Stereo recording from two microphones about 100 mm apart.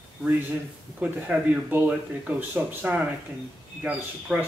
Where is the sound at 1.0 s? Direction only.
15° right (ahead or behind).